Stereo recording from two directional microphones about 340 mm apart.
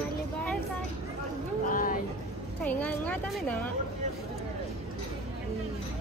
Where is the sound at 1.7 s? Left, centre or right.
Left.